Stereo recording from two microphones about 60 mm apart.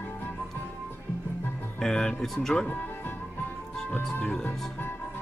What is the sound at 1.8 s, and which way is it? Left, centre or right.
Speech, centre.